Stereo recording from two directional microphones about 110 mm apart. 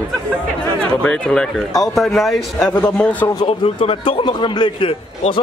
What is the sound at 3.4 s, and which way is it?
A man's voice, 55° left (ahead or behind).